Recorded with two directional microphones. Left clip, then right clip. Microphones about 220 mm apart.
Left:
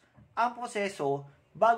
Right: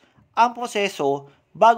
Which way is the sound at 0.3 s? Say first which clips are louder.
Right 10 dB; 45° right (ahead or behind).